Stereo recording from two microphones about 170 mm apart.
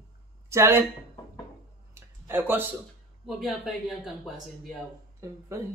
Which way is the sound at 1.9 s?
15° right (ahead or behind).